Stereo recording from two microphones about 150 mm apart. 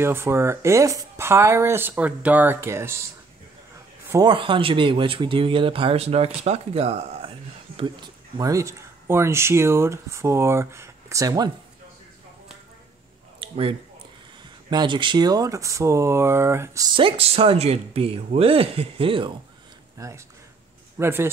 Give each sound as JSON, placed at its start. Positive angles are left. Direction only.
{"t": 0.0, "sound": "speech", "side_deg": -15}
{"t": 4.3, "sound": "speech", "side_deg": -35}
{"t": 13.4, "sound": "a sound", "side_deg": -35}
{"t": 14.7, "sound": "speech", "side_deg": -30}
{"t": 16.9, "sound": "speech", "side_deg": -35}
{"t": 20.0, "sound": "speech", "side_deg": -20}